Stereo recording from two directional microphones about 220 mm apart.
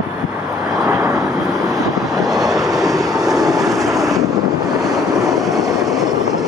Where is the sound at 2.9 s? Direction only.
15° right (ahead or behind).